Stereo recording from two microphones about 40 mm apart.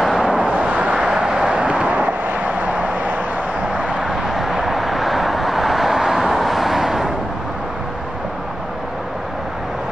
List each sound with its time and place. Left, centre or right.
0.5 s vehicle: right
1.0 s vehicle: centre
1.5 s vehicle: right
1.9 s vehicle: right
4.0 s vehicle: centre